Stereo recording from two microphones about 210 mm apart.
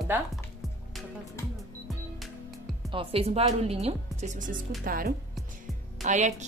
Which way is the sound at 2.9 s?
25° right (ahead or behind).